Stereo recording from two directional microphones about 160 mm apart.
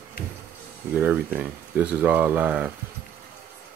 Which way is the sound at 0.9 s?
10° right (ahead or behind).